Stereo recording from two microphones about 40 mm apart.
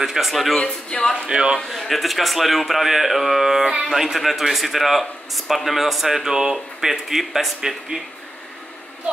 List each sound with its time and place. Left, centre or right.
0.0 s a man's voice: centre
0.6 s speech: left
1.3 s a man's voice: right
1.7 s a man's voice: centre